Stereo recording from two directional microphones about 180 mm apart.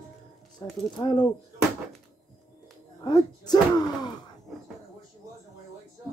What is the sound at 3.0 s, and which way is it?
Speech, 20° left (ahead or behind).